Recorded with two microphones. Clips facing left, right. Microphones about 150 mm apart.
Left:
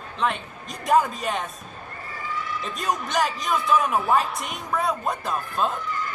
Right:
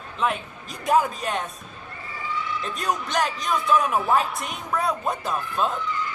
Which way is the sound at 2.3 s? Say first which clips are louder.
Right 2 dB; 45° left (ahead or behind).